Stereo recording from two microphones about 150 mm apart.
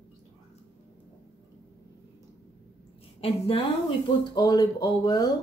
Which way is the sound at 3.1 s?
40° left (ahead or behind).